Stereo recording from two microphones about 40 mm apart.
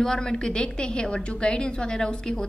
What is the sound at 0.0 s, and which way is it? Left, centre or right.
A woman's voice, centre.